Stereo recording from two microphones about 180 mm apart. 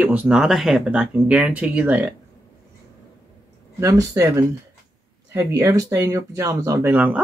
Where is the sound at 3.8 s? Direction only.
20° right (ahead or behind).